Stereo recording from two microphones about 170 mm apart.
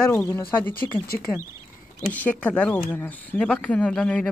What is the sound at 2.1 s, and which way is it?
Speech, 10° left (ahead or behind).